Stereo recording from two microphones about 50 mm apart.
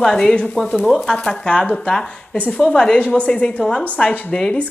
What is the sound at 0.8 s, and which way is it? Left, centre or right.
Speech, centre.